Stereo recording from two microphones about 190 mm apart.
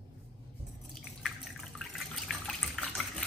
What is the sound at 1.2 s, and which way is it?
Water, centre (ahead or behind).